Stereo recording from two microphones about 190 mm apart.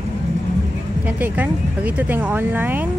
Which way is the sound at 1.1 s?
10° right (ahead or behind).